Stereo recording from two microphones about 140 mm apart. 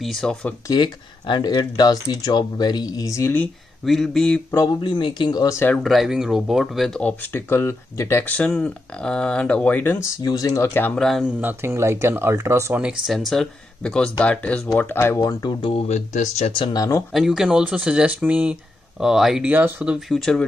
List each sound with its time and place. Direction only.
0.0 s speech: 5° left (ahead or behind)
0.7 s speech: 30° left (ahead or behind)
3.8 s speech: centre (ahead or behind)
4.6 s speech: 35° left (ahead or behind); by 5.8 s 20° left (ahead or behind)
5.8 s speech: centre (ahead or behind)
10.2 s speech: 25° left (ahead or behind); by 11.3 s centre (ahead or behind)
11.4 s speech: 20° right (ahead or behind)
12.8 s speech: centre (ahead or behind); by 15.5 s 25° left (ahead or behind)
15.6 s speech: 45° left (ahead or behind)
16.6 s speech: 25° left (ahead or behind)
17.1 s speech: 5° right (ahead or behind)